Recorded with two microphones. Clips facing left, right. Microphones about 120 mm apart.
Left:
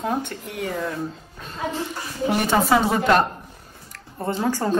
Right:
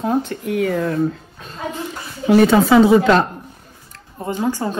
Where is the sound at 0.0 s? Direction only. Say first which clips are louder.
Right 6 dB; 40° right (ahead or behind).